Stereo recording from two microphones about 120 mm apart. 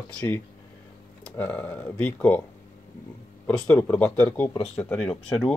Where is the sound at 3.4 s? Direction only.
15° left (ahead or behind).